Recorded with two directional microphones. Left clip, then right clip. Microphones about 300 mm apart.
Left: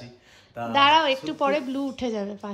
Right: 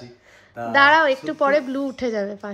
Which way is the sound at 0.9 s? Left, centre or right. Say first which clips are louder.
Right 3 dB; centre.